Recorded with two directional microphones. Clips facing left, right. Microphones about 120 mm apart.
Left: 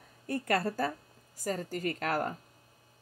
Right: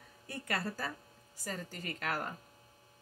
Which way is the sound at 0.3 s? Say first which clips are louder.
Left 8 dB; 40° left (ahead or behind).